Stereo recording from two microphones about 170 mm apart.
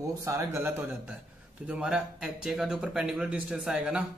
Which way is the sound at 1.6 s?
5° right (ahead or behind).